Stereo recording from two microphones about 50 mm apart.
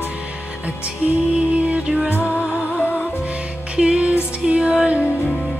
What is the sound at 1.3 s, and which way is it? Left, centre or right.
Music, right.